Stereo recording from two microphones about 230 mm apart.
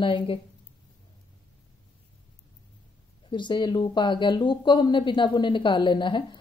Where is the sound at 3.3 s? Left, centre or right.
Centre.